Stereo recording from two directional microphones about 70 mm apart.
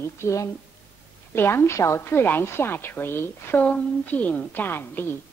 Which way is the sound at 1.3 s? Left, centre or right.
Left.